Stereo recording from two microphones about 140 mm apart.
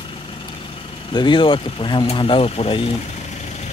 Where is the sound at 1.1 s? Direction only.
35° left (ahead or behind).